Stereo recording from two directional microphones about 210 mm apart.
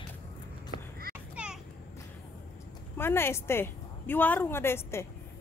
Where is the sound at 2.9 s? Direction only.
10° left (ahead or behind).